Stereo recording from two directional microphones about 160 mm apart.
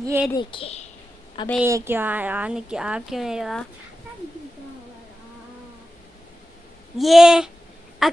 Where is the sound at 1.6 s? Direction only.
15° right (ahead or behind).